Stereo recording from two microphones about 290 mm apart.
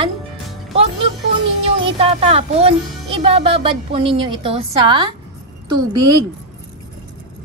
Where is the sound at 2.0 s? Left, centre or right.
Right.